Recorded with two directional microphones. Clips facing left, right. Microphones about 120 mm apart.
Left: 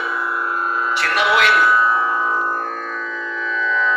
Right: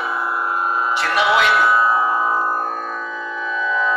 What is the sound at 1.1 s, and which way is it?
Speech, centre (ahead or behind).